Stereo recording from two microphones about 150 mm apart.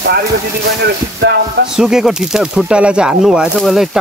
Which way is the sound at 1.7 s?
5° right (ahead or behind).